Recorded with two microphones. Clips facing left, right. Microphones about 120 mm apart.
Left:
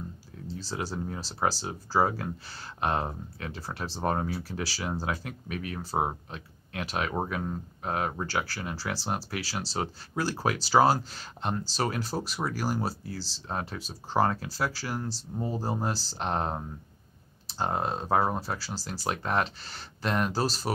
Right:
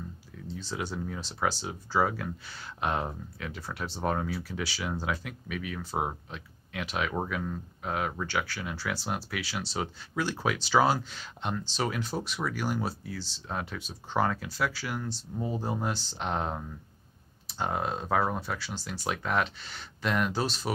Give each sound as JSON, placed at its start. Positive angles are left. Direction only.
{"t": 0.5, "sound": "speech", "side_deg": 35}